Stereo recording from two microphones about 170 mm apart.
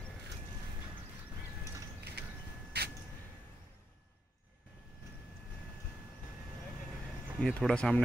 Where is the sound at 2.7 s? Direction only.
80° right.